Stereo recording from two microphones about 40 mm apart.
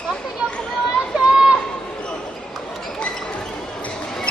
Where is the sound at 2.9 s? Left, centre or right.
Left.